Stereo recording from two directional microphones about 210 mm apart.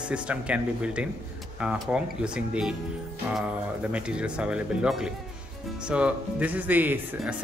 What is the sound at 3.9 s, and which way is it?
Speech, 5° right (ahead or behind).